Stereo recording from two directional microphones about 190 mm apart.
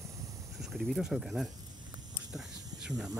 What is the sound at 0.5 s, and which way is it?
Speech, centre (ahead or behind).